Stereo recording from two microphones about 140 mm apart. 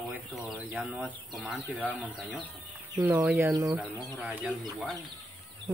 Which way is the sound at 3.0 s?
15° right (ahead or behind).